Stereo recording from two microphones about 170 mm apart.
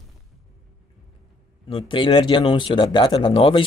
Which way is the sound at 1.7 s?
30° left (ahead or behind).